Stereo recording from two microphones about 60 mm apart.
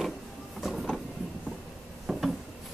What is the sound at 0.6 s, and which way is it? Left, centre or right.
Train, centre.